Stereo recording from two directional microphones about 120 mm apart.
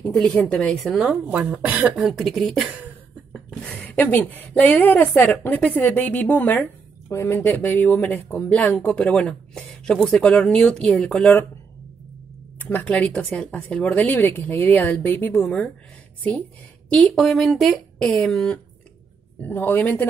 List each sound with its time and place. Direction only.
0.1 s speech: 10° left (ahead or behind)
0.9 s speech: 10° right (ahead or behind)
3.6 s speech: 15° left (ahead or behind)
12.5 s speech: 15° left (ahead or behind)
16.9 s speech: 5° left (ahead or behind)